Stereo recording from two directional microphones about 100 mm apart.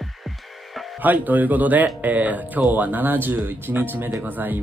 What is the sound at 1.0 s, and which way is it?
Speech, 15° right (ahead or behind).